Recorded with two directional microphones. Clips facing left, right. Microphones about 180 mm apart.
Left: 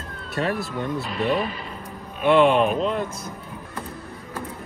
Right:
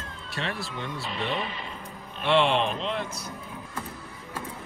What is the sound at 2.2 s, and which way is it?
Speech, 50° left (ahead or behind).